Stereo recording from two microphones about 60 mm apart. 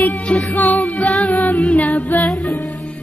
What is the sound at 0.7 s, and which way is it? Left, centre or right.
Music, centre.